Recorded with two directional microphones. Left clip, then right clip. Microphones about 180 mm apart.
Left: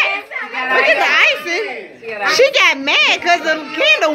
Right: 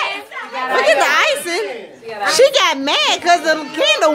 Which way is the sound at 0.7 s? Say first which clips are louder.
Left 1 dB; 30° right (ahead or behind).